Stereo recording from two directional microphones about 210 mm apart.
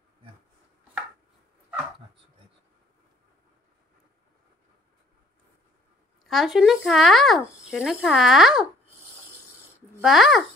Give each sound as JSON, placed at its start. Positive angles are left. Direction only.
{"t": 6.2, "sound": "speech", "side_deg": 0}
{"t": 10.0, "sound": "speech", "side_deg": 0}